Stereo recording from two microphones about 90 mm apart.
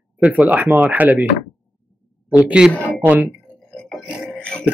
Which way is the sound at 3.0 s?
15° right (ahead or behind).